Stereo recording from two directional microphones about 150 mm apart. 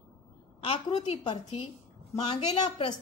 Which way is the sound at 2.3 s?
45° left (ahead or behind).